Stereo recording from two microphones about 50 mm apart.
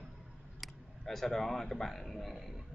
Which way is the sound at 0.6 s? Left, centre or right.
Centre.